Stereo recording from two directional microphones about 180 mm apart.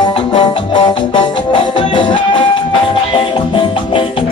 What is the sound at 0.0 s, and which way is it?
Music, 30° left (ahead or behind).